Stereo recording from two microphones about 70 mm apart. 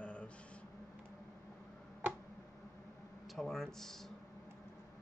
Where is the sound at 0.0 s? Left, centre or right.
Centre.